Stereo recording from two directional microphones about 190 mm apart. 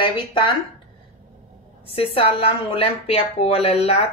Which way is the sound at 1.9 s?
30° left (ahead or behind).